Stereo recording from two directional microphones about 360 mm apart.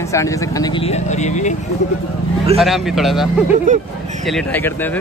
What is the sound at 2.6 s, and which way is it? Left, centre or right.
A man's voice, centre.